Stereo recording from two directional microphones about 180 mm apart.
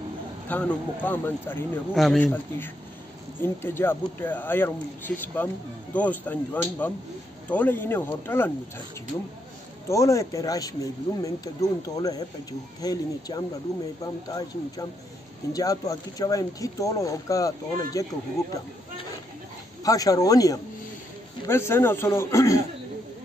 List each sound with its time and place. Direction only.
0.5 s speech: 10° left (ahead or behind)
2.0 s speech: centre (ahead or behind)
3.4 s speech: 10° left (ahead or behind)
9.8 s speech: 15° left (ahead or behind)
13.7 s speech: centre (ahead or behind)
14.0 s speech: 20° left (ahead or behind)
19.8 s speech: 20° left (ahead or behind)